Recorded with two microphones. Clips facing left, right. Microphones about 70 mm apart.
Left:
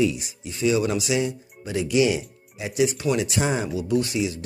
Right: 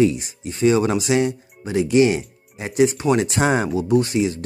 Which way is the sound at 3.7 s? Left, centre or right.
Right.